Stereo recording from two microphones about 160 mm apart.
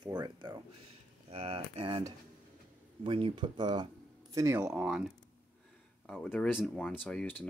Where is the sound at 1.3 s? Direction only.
40° right (ahead or behind); by 4.7 s 20° right (ahead or behind).